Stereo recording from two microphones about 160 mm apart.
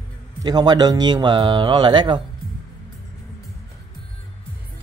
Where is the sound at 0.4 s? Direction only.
25° right (ahead or behind).